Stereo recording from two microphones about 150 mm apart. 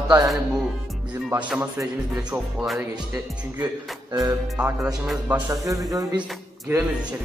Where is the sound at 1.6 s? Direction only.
20° right (ahead or behind).